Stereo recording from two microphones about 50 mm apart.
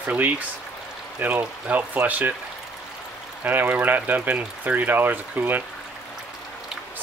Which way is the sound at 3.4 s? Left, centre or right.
Right.